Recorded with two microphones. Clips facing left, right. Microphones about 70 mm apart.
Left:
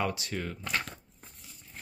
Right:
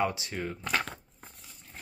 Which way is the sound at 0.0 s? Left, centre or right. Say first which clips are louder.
Right 2 dB; right.